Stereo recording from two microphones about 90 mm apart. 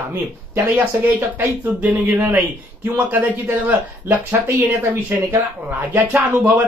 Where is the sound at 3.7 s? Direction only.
20° right (ahead or behind).